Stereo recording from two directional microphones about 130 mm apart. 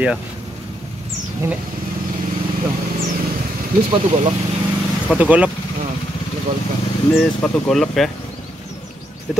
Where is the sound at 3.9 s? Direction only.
45° right (ahead or behind).